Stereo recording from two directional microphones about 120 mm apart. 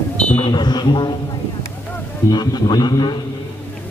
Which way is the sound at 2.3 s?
35° left (ahead or behind).